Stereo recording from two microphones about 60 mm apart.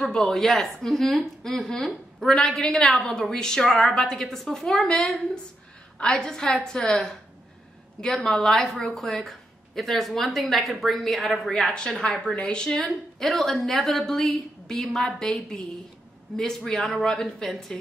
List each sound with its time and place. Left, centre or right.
0.0 s a woman's voice: centre
8.3 s a woman's voice: centre
11.7 s a woman's voice: centre